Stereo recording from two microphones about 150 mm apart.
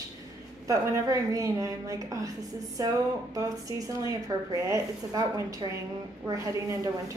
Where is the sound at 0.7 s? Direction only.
20° right (ahead or behind).